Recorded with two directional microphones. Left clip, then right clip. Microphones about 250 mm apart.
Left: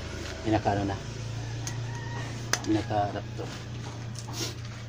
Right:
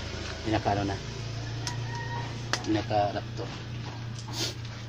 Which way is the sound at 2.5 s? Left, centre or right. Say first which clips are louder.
Even; centre.